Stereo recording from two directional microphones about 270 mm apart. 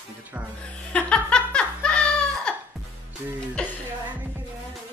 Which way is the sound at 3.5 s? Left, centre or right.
Centre.